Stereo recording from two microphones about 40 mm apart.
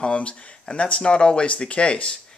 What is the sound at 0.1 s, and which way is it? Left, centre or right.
Speech, left.